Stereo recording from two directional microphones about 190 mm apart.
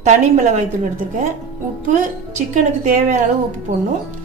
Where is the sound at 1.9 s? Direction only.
45° right (ahead or behind).